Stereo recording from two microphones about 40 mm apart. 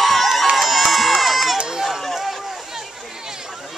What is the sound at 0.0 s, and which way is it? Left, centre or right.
Crowd, centre.